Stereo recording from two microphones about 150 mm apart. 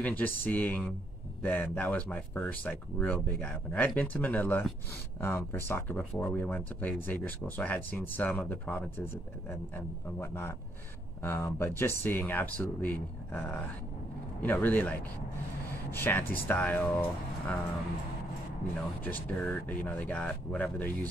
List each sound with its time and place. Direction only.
0.0 s speech: 10° left (ahead or behind)
19.0 s speech: 10° left (ahead or behind)